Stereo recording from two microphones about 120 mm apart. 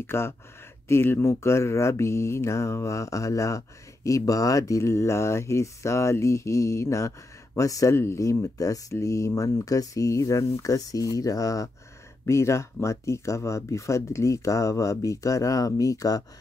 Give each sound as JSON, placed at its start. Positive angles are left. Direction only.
{"t": 0.0, "sound": "mantra", "side_deg": 20}